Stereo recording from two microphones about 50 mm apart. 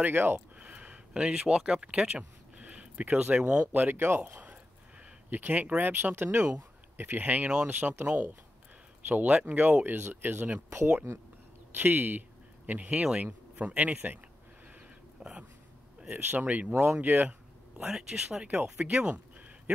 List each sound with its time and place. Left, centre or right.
0.0 s speech: right
0.6 s speech: right
3.7 s speech: right
5.3 s speech: right
9.9 s speech: right
11.7 s speech: right
15.2 s speech: centre
16.1 s speech: right
16.7 s speech: right
17.0 s speech: right
17.9 s speech: centre
18.8 s a sound: centre